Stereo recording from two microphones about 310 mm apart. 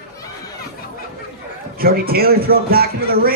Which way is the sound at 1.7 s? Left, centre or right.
Right.